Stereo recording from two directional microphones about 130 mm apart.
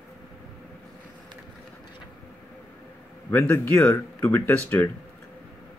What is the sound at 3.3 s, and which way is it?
Speech, 15° left (ahead or behind).